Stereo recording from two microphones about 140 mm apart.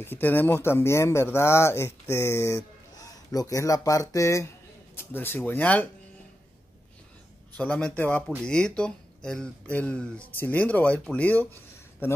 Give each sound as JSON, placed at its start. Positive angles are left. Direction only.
{"t": 0.0, "sound": "speech", "side_deg": 15}
{"t": 7.5, "sound": "speech", "side_deg": 10}